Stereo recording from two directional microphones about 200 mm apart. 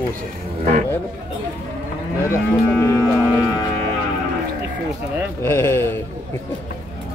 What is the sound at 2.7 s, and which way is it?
Cattle, 5° left (ahead or behind).